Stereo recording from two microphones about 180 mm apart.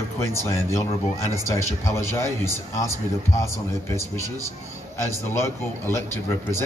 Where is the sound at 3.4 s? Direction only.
15° left (ahead or behind).